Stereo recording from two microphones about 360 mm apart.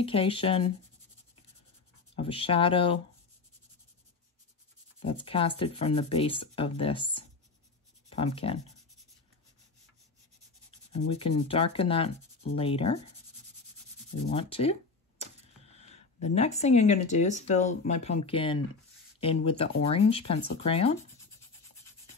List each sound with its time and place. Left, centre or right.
0.0 s speech: centre
2.1 s speech: centre
5.0 s speech: centre
10.9 s speech: centre
14.3 s a sound: centre
15.7 s speech: centre